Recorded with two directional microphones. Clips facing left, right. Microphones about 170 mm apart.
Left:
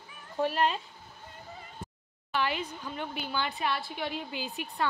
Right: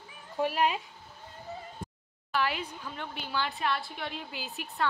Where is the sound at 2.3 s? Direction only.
Centre (ahead or behind).